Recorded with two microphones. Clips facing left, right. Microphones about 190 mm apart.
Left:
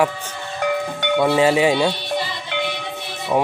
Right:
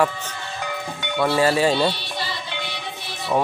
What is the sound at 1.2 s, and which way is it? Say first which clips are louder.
Speech: left 2 dB; 15° left (ahead or behind).